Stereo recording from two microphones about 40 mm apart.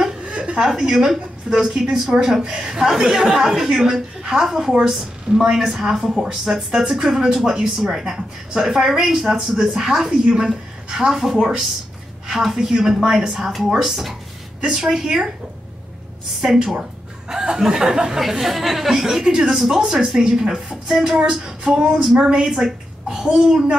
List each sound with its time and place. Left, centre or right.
0.2 s a sound: right
0.6 s a woman's voice: centre
2.4 s a woman's voice: right
10.2 s music: right
10.9 s a woman's voice: centre
14.6 s a woman's voice: centre
17.3 s a woman's voice: centre
21.3 s music: right
22.5 s a sound: centre
23.2 s music: right